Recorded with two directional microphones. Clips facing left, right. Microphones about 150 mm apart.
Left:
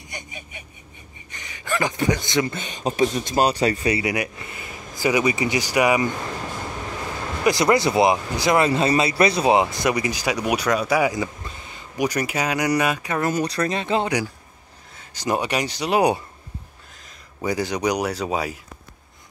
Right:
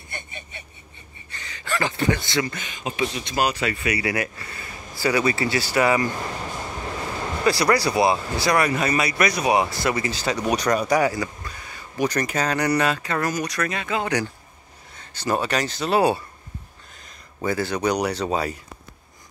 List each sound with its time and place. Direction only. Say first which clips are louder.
0.1 s speech: even; 10° left (ahead or behind); by 4.0 s 35° left (ahead or behind)
4.0 s speech: left 1 dB; 15° left (ahead or behind)
7.4 s speech: left 2 dB; 20° left (ahead or behind); by 11.1 s 5° left (ahead or behind)
11.1 s a sound: left 1 dB; 20° left (ahead or behind)
12.0 s speech: even; 10° left (ahead or behind)
13.3 s speech: left 3 dB; 30° left (ahead or behind)
14.0 s speech: left 1 dB; 10° left (ahead or behind)
17.4 s speech: even; 15° left (ahead or behind)